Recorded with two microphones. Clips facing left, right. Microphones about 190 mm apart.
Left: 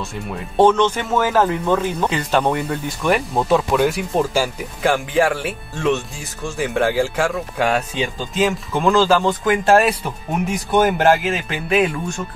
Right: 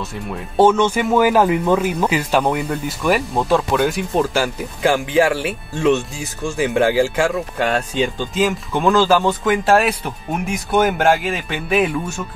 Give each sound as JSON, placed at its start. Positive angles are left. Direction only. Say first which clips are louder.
{"t": 0.0, "sound": "speech", "louder": "right 1 dB", "side_deg": 0}
{"t": 7.5, "sound": "speech", "louder": "right 1 dB", "side_deg": 5}